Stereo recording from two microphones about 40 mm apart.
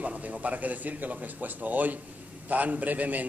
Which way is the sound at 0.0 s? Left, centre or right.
Right.